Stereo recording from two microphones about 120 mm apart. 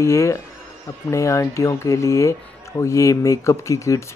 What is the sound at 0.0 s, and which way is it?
Speech, 25° left (ahead or behind).